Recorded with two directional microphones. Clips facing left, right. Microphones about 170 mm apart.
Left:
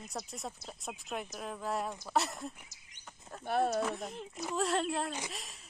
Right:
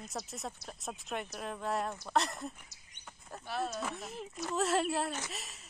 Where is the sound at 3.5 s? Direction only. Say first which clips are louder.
Left 7 dB; 60° left (ahead or behind).